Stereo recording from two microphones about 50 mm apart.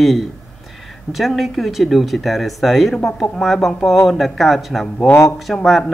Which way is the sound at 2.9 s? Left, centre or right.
Centre.